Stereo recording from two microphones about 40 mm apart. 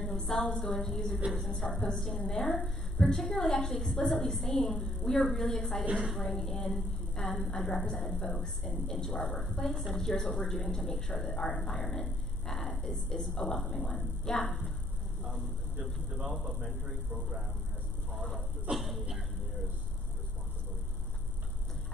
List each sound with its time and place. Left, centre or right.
0.0 s a woman's voice: centre
18.1 s vehicle: centre
18.8 s a sound: centre